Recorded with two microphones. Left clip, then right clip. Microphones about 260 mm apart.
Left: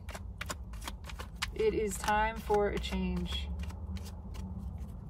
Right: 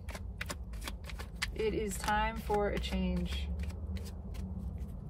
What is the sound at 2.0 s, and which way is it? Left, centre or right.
Speech, centre.